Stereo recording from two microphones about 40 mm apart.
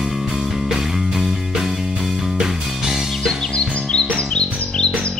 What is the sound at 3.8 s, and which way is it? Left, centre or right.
Music, centre.